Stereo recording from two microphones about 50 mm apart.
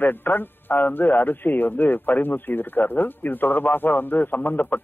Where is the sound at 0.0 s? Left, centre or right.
Left.